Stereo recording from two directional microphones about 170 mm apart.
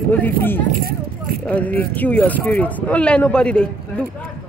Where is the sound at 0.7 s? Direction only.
60° right (ahead or behind).